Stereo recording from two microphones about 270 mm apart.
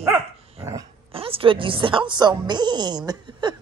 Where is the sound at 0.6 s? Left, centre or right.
Centre.